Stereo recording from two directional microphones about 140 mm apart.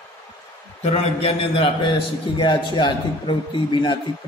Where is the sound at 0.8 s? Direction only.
40° left (ahead or behind).